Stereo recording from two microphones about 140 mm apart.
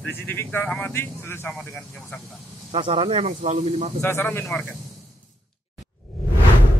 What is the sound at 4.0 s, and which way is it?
Speech, 15° left (ahead or behind).